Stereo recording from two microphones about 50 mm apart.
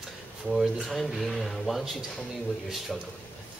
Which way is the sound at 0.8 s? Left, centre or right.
Centre.